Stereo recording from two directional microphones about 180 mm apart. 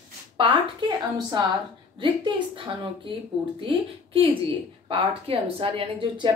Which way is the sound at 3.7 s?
30° right (ahead or behind).